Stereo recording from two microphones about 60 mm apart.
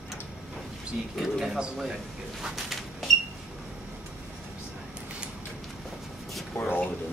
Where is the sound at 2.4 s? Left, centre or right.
Centre.